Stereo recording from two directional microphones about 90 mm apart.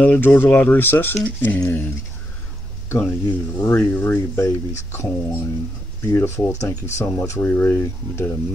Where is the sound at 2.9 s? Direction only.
25° left (ahead or behind).